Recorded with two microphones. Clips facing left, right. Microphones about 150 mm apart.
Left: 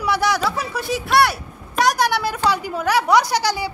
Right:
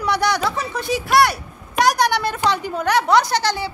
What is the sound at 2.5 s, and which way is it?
A woman's voice, 5° left (ahead or behind).